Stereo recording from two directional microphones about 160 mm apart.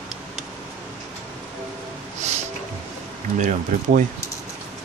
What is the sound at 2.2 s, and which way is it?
Music, 45° right (ahead or behind).